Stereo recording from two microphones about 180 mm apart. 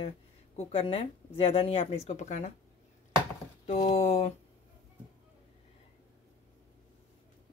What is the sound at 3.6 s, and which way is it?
Speech, 40° left (ahead or behind).